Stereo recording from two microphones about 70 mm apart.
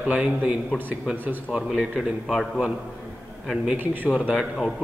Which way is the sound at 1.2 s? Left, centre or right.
Right.